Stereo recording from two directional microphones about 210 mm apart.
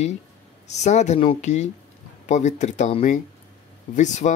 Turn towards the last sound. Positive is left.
turn(degrees=35)  # may be behind; listen again after turning